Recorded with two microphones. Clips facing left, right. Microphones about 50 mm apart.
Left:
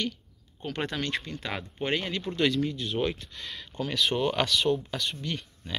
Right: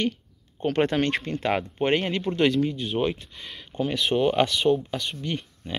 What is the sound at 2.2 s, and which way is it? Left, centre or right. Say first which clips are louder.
Speech: right 3 dB; right.